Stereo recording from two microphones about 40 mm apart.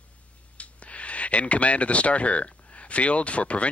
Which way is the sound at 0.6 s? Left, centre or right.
Left.